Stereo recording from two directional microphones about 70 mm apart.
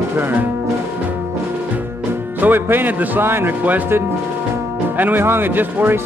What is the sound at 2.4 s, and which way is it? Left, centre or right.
A man's voice, right.